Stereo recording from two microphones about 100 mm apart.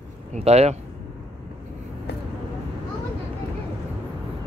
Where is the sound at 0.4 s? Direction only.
90° right.